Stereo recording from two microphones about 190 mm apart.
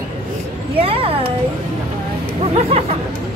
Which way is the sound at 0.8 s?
30° right (ahead or behind).